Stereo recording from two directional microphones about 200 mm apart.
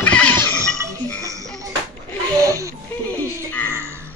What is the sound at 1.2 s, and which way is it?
Music, 15° right (ahead or behind).